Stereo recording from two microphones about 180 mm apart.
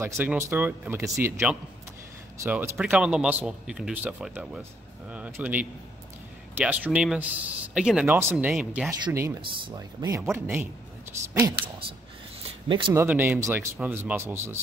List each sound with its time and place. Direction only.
0.0 s a man's voice: 10° right (ahead or behind)
2.4 s a man's voice: 10° right (ahead or behind)
9.0 s a man's voice: 15° right (ahead or behind)
9.4 s a man's voice: 25° right (ahead or behind)
12.6 s speech: 25° right (ahead or behind)
12.9 s a man's voice: 10° right (ahead or behind)